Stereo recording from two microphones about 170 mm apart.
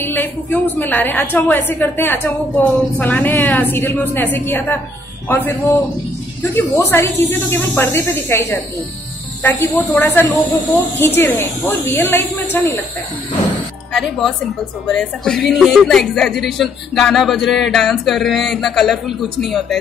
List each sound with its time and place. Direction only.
0.0 s a woman's voice: 10° left (ahead or behind)
9.8 s a woman's voice: 10° left (ahead or behind)
14.9 s speech: 5° left (ahead or behind)